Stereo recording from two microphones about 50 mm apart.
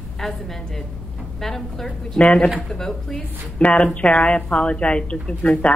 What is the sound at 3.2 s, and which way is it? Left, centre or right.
A woman's voice, left.